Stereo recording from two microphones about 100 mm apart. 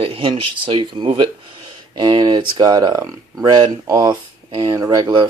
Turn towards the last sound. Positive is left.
turn(degrees=-45)  # may be behind; listen again after turning